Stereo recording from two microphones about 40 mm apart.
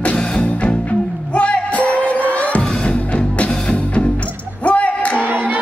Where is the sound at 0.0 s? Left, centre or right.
Left.